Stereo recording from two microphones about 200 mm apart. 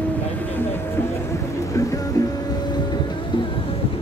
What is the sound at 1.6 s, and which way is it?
Train, 15° left (ahead or behind).